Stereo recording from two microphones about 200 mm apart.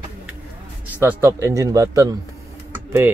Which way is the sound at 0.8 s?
10° right (ahead or behind).